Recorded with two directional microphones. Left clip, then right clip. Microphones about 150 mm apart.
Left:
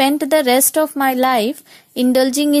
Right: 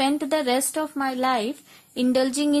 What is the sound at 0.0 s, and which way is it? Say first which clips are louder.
A woman's voice: left 8 dB; 35° left (ahead or behind).